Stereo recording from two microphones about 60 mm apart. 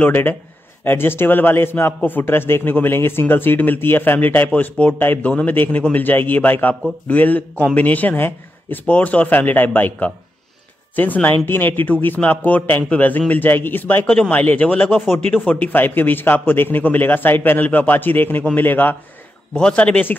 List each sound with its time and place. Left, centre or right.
0.0 s a man's voice: left
15.5 s speech: left
19.5 s a man's voice: centre